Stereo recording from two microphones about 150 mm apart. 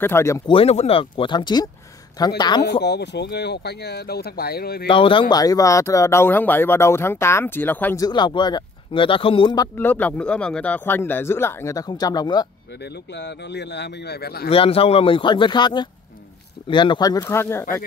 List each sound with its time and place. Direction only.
0.0 s speech: 15° left (ahead or behind)
0.5 s a man's voice: 40° left (ahead or behind)
3.3 s speech: 90° left
4.8 s a man's voice: 35° left (ahead or behind)
5.3 s speech: 25° left (ahead or behind)
8.0 s a man's voice: 30° left (ahead or behind)
9.8 s speech: 10° left (ahead or behind); by 12.4 s 25° left (ahead or behind)
14.0 s speech: 90° left
14.5 s a man's voice: 40° left (ahead or behind); by 17.6 s 15° left (ahead or behind)